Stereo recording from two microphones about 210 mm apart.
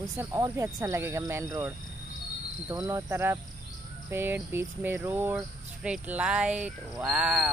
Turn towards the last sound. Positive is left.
turn(degrees=-5)  # may be behind; listen again after turning